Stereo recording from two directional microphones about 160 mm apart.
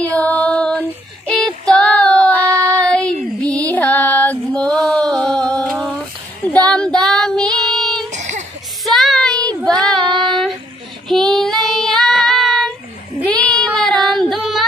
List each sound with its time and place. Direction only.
0.0 s child singing: 10° left (ahead or behind)
2.7 s a sound: 5° left (ahead or behind)
3.3 s female singing: 5° left (ahead or behind)
6.4 s child singing: 10° left (ahead or behind)
8.1 s a sound: 45° right (ahead or behind)
8.8 s child singing: centre (ahead or behind)